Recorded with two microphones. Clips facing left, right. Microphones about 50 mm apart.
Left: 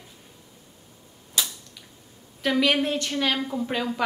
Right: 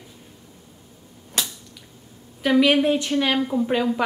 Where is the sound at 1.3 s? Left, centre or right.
Right.